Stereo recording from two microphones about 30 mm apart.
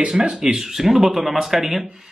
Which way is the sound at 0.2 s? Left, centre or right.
Centre.